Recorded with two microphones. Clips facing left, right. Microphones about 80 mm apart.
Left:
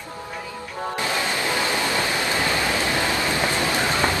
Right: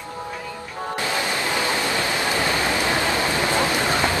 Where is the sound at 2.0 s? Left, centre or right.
Right.